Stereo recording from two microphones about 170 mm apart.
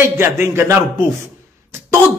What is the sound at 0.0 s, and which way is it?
Speech, 15° right (ahead or behind).